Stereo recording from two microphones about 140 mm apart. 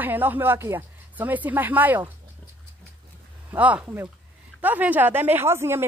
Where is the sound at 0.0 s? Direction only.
15° right (ahead or behind).